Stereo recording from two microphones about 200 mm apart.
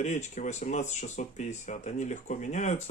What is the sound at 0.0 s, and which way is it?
Speech, 35° left (ahead or behind).